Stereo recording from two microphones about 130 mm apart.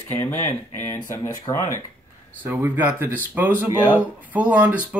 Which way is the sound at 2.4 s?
15° right (ahead or behind).